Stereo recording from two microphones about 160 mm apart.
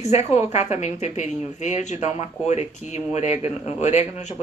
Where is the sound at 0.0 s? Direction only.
40° left (ahead or behind).